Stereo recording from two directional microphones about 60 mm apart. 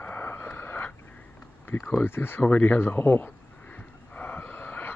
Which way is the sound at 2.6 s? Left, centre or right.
Left.